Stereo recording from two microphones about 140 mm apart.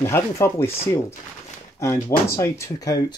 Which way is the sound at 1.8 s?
20° left (ahead or behind).